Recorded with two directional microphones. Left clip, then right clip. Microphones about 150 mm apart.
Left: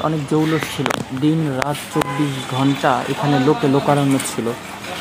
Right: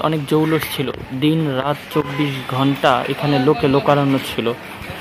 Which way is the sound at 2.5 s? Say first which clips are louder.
Right 2 dB; 15° right (ahead or behind).